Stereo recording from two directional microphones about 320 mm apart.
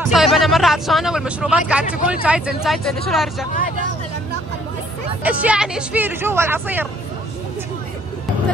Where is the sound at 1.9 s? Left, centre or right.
Left.